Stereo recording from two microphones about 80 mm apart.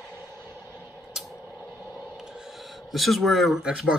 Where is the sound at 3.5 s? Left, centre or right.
Centre.